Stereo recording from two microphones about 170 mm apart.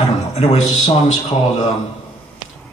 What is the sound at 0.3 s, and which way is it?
Speech, 40° left (ahead or behind).